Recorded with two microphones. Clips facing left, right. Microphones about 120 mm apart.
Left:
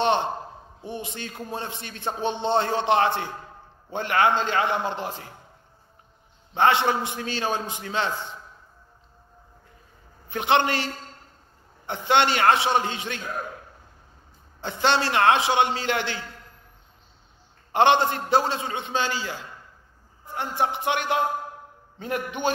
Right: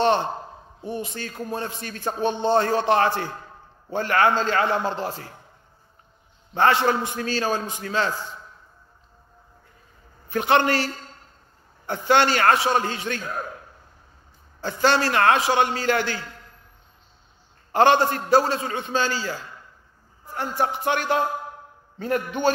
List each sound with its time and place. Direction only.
0.9 s a man's voice: 20° left (ahead or behind)
4.6 s a man's voice: 35° right (ahead or behind)
4.9 s a man's voice: 20° left (ahead or behind)
6.5 s a man's voice: 20° left (ahead or behind)
10.3 s a man's voice: 20° left (ahead or behind)
14.6 s a man's voice: 20° left (ahead or behind)
17.7 s a man's voice: 20° left (ahead or behind)
20.3 s a man's voice: 20° left (ahead or behind)